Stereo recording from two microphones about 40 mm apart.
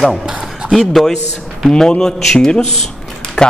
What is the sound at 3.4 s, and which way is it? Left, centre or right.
Music, centre.